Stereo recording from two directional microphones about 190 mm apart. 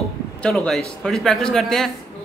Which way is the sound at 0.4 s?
Centre (ahead or behind).